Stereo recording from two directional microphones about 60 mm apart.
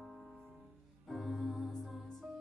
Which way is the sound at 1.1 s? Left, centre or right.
Centre.